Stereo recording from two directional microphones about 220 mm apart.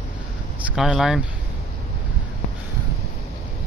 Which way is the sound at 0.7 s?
5° right (ahead or behind).